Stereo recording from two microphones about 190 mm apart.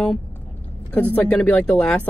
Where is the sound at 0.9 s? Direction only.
10° left (ahead or behind).